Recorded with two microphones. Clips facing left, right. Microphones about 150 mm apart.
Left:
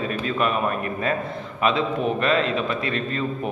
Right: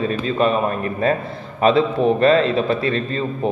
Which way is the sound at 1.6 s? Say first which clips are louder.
Right 7 dB; 35° right (ahead or behind).